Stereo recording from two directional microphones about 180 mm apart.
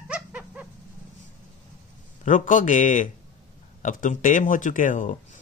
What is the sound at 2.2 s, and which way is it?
Speech, 45° left (ahead or behind).